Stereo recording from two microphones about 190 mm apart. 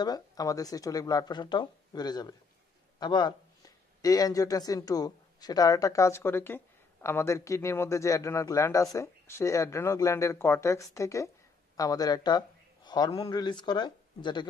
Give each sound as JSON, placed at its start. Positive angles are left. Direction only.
{"t": 0.0, "sound": "a man's voice", "side_deg": 20}